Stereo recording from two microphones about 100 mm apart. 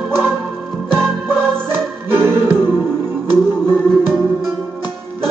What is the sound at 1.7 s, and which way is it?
Music, 25° right (ahead or behind).